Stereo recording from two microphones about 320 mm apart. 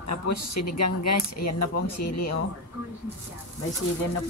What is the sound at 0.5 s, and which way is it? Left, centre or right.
Speech, left.